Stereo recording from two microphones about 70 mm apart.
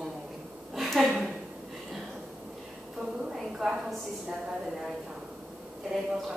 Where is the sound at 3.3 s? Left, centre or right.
Centre.